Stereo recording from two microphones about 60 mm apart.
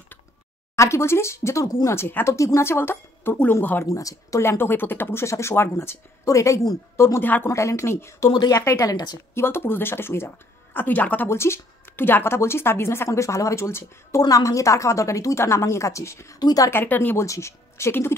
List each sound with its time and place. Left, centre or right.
0.7 s speech: left
1.9 s speech: left
2.3 s speech: left
3.8 s speech: left
4.4 s speech: left
5.2 s speech: left
6.2 s speech: left
7.2 s speech: left
7.4 s speech: left
9.3 s speech: left
11.2 s a woman's voice: left
16.7 s speech: left
17.2 s speech: left